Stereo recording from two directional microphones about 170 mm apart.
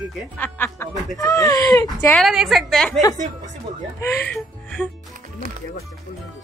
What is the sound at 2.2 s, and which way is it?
Speech, centre (ahead or behind).